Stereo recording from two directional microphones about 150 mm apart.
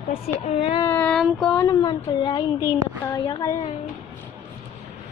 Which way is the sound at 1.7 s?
25° left (ahead or behind).